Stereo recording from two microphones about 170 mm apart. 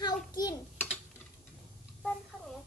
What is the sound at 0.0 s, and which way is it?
Tick, 20° left (ahead or behind).